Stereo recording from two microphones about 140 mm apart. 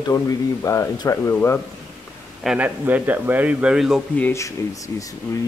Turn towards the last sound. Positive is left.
turn(degrees=25)  # may be behind; listen again after turning